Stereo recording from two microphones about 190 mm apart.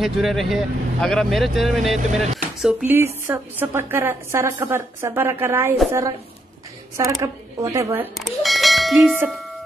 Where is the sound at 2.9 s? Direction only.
10° right (ahead or behind).